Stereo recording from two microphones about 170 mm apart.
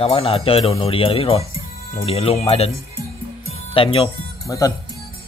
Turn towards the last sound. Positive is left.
turn(degrees=20)  # may be behind; listen again after turning